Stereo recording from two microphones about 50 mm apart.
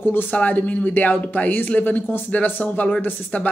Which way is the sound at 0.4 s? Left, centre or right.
Left.